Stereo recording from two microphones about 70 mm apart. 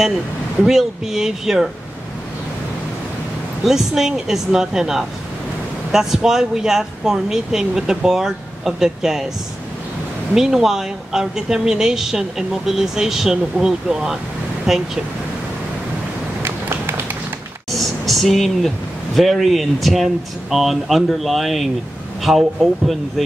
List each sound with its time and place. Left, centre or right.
0.7 s speech: centre
3.6 s speech: centre
10.3 s speech: centre
16.4 s run: right
17.7 s a sound: centre
19.1 s speech: centre